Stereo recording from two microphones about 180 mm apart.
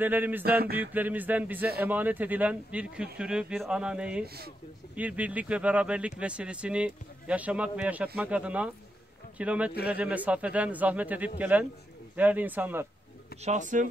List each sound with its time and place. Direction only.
0.0 s speech: 10° right (ahead or behind)
0.4 s a sound: 60° right (ahead or behind)
0.7 s speech: 10° right (ahead or behind)
13.4 s speech: 40° right (ahead or behind)